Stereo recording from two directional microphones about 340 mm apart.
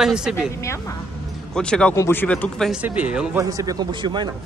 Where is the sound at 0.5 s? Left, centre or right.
Centre.